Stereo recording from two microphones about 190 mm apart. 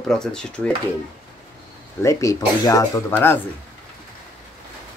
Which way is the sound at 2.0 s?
15° left (ahead or behind).